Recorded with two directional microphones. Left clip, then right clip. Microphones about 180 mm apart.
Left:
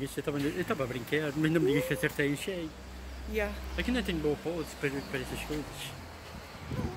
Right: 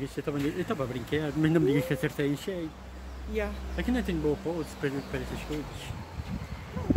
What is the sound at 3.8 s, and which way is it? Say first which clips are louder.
Speech: right 1 dB; 30° right (ahead or behind).